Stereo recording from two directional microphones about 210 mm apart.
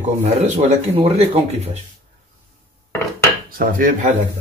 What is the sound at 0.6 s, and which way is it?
Speech, 30° right (ahead or behind).